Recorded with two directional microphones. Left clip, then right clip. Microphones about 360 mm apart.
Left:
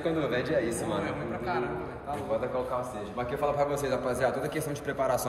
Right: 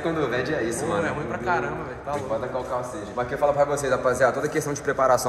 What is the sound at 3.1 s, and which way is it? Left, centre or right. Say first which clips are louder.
Speech: right 7 dB; centre.